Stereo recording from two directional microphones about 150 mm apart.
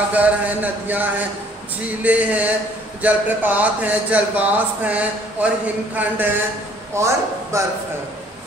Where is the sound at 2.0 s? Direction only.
10° right (ahead or behind).